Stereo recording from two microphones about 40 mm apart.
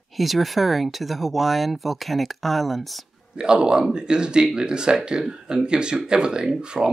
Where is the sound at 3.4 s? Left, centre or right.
Right.